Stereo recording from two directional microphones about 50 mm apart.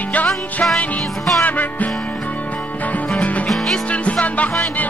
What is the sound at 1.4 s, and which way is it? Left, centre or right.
Music, left.